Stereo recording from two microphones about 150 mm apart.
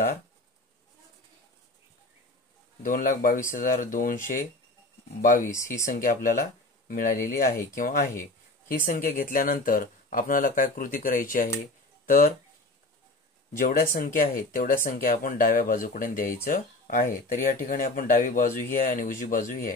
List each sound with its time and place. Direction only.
2.8 s speech: 65° left (ahead or behind)
13.6 s speech: 80° left
13.9 s speech: 65° left (ahead or behind)